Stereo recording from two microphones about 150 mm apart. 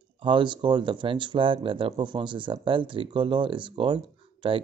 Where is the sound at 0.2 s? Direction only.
35° right (ahead or behind).